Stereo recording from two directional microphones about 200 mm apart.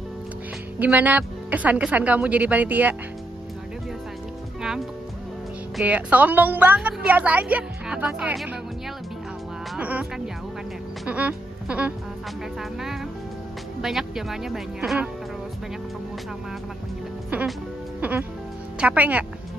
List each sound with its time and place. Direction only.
0.7 s a woman's voice: 10° right (ahead or behind)
4.6 s music: centre (ahead or behind)
5.8 s a woman's voice: 5° right (ahead or behind)
9.8 s a woman's voice: 5° right (ahead or behind)
13.7 s speech: centre (ahead or behind)
17.3 s a woman's voice: 10° right (ahead or behind)